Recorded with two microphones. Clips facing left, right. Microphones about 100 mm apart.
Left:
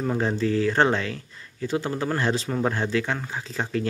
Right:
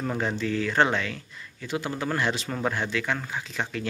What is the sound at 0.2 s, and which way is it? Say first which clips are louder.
Speech: left 5 dB; 35° left (ahead or behind).